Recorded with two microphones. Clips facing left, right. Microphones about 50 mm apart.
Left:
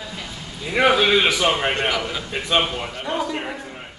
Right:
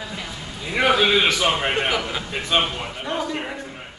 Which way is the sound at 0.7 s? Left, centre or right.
Centre.